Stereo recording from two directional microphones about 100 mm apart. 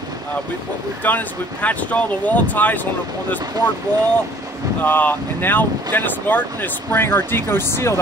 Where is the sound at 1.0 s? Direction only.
15° left (ahead or behind).